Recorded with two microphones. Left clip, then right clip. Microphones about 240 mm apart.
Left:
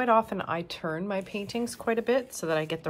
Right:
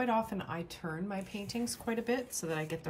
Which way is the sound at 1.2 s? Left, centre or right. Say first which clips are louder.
Left 7 dB; centre.